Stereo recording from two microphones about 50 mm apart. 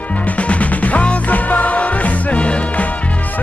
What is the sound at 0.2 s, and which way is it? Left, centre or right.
Music, left.